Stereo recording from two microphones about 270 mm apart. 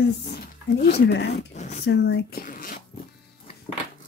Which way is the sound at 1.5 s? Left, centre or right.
Left.